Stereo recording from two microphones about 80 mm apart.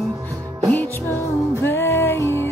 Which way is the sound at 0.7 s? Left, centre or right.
Left.